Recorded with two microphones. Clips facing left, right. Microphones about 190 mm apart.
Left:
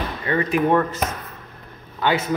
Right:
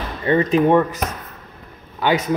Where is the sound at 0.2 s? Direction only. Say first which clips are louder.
Right 5 dB; 25° right (ahead or behind).